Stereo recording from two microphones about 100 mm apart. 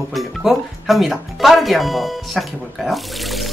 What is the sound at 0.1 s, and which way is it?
Speech, centre (ahead or behind).